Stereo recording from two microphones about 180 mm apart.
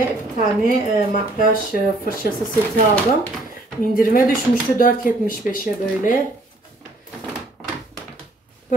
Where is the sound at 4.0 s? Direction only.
50° left (ahead or behind).